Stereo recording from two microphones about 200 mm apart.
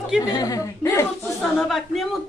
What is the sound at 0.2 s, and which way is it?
Speech, 20° left (ahead or behind).